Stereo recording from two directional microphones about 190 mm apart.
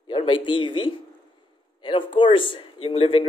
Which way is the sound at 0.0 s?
25° left (ahead or behind).